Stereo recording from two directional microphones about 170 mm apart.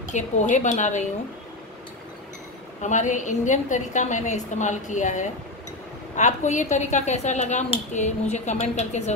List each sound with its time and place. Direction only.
0.0 s a woman's voice: 45° left (ahead or behind)
2.8 s a woman's voice: 45° left (ahead or behind)